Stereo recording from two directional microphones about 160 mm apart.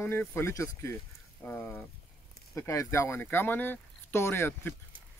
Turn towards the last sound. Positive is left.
turn(degrees=15)  # may be behind; listen again after turning